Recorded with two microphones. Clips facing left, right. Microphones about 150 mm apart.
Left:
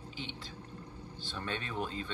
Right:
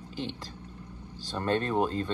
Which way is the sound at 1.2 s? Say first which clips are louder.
Right 11 dB; 40° right (ahead or behind).